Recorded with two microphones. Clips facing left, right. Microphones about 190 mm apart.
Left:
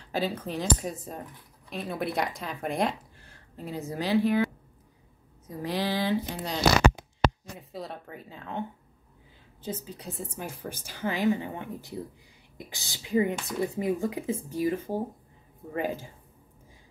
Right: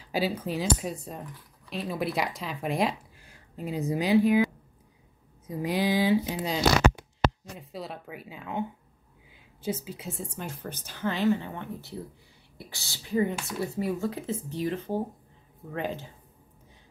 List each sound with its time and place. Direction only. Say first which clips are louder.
0.0 s a woman's voice: right 1 dB; 10° right (ahead or behind)
3.2 s speech: right 3 dB; 15° right (ahead or behind)
5.6 s speech: right 3 dB; 10° right (ahead or behind)
9.8 s speech: right 1 dB; centre (ahead or behind)